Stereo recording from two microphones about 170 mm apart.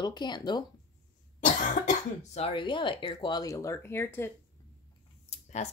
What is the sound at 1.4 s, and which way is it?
Speech, 45° left (ahead or behind).